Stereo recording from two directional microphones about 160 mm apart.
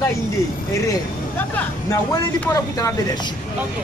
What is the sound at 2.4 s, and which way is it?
Speech, 20° left (ahead or behind).